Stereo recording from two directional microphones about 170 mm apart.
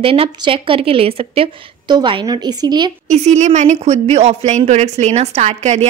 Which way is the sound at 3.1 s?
45° right (ahead or behind).